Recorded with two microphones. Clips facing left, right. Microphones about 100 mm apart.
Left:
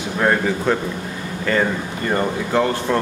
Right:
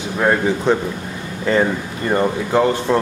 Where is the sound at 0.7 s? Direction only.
20° right (ahead or behind).